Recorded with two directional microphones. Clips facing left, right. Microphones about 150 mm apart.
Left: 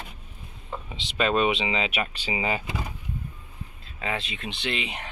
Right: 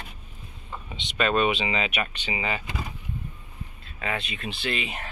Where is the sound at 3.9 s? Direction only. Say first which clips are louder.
Even; 25° left (ahead or behind).